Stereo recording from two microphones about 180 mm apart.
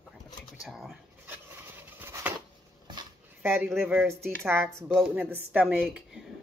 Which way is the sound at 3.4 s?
10° right (ahead or behind).